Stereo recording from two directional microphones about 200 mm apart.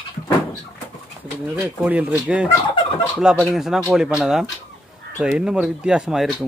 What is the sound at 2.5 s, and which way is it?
Turkey, 25° left (ahead or behind).